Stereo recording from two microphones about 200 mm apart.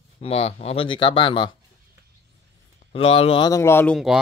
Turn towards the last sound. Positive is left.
turn(degrees=10)  # may be behind; listen again after turning